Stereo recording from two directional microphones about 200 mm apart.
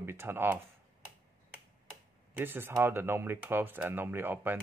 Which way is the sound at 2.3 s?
10° right (ahead or behind).